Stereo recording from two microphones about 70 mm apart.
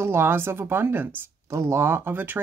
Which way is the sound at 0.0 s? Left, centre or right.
Right.